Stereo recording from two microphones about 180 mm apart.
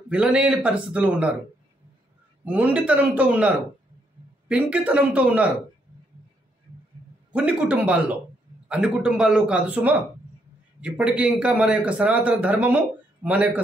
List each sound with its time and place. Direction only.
0.1 s a man's voice: 5° right (ahead or behind)
2.4 s a man's voice: 5° right (ahead or behind)
7.3 s a man's voice: 10° right (ahead or behind)